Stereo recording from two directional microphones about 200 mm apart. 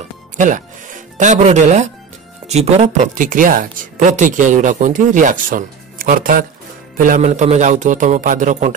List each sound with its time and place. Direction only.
0.4 s a woman's voice: 40° right (ahead or behind)